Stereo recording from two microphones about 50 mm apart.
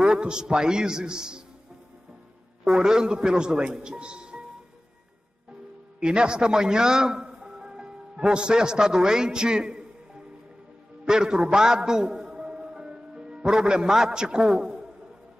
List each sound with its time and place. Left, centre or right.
0.0 s a man's voice: centre
2.6 s a man's voice: centre
5.9 s a man's voice: centre
11.1 s music: centre
13.5 s a man's voice: centre
14.6 s a sound: centre